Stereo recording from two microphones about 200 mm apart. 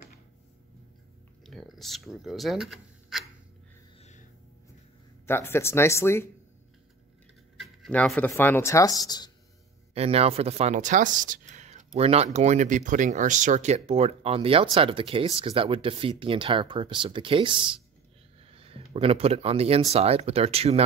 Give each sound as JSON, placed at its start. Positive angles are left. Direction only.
{"t": 1.4, "sound": "a sound", "side_deg": 0}
{"t": 5.2, "sound": "speech", "side_deg": 10}
{"t": 7.5, "sound": "speech", "side_deg": 0}
{"t": 9.9, "sound": "speech", "side_deg": -30}